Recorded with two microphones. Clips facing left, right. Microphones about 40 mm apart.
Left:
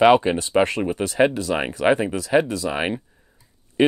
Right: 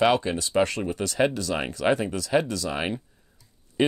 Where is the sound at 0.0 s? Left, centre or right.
Left.